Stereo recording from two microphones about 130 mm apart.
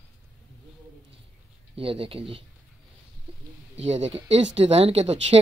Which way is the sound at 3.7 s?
55° right (ahead or behind).